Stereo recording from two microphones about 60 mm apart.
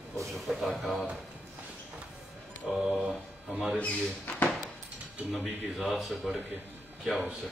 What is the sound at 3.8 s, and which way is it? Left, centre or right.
Speech, left.